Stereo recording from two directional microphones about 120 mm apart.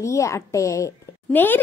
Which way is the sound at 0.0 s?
25° left (ahead or behind).